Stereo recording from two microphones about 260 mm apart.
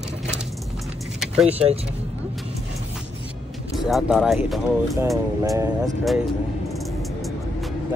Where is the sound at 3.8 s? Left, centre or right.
Centre.